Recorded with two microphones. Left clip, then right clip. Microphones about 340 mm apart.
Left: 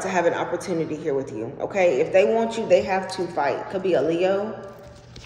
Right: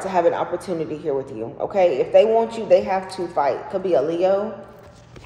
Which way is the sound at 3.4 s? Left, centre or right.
Right.